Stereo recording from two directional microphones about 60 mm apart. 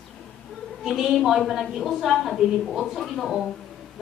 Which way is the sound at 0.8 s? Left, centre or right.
Centre.